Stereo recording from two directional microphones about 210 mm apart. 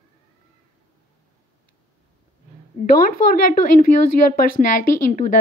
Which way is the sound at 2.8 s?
40° left (ahead or behind).